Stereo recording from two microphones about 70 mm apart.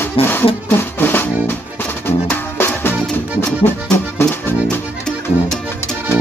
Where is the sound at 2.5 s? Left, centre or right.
Left.